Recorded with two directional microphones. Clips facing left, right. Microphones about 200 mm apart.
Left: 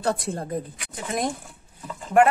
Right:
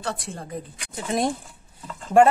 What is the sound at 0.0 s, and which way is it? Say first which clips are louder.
Speech: left 6 dB; 40° left (ahead or behind).